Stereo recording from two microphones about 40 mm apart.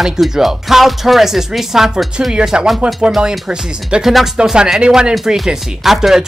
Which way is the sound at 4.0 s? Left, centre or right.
Centre.